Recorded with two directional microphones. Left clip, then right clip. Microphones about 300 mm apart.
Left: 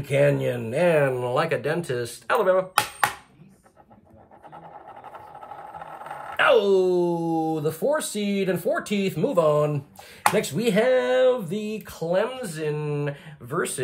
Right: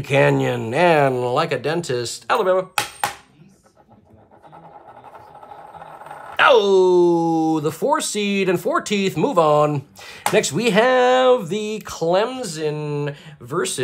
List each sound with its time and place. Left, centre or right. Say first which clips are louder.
0.0 s speech: right 4 dB; centre
5.8 s vehicle: even; centre
6.3 s speech: right 5 dB; centre